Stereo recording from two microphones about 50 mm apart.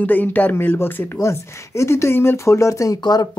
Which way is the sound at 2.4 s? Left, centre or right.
Left.